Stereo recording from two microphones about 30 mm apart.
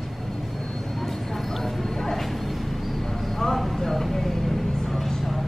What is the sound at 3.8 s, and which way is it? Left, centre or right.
Vehicle, centre.